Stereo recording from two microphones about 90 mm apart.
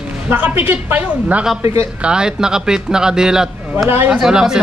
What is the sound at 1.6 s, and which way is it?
Speech, 35° right (ahead or behind).